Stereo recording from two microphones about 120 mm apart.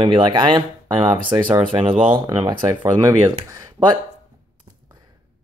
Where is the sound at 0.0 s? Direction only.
45° right (ahead or behind).